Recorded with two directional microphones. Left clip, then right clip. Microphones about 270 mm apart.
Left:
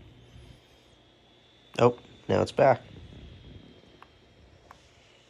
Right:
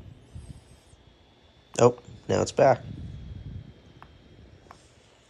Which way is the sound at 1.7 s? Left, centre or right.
Centre.